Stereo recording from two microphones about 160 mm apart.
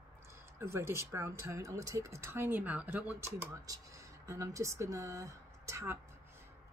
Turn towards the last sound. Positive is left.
turn(degrees=-15)  # may be behind; listen again after turning